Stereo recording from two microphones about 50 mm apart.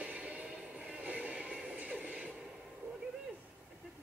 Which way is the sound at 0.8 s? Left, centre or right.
Right.